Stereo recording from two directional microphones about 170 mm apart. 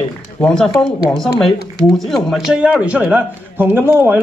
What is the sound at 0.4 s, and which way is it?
A man's voice, 5° left (ahead or behind).